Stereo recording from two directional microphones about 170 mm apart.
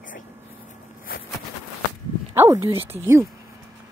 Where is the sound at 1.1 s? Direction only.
60° left (ahead or behind).